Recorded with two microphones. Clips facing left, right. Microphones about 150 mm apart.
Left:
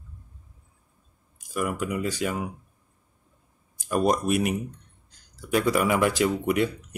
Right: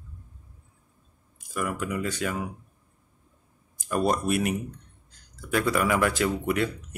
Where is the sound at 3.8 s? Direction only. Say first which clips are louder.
Left 2 dB; 10° left (ahead or behind).